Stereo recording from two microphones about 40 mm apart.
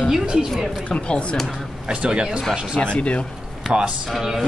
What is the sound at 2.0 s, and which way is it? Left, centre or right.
Speech, right.